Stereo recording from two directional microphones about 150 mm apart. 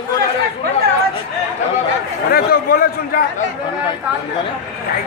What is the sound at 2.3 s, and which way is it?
Speech, 80° left.